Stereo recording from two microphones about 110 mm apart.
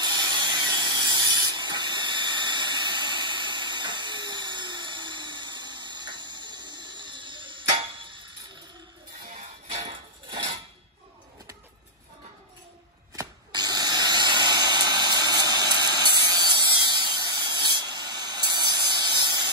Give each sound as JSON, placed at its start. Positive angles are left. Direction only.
{"t": 0.0, "sound": "a sound", "side_deg": -40}
{"t": 9.7, "sound": "music", "side_deg": -90}
{"t": 10.3, "sound": "dishes", "side_deg": -60}
{"t": 13.1, "sound": "spray", "side_deg": -35}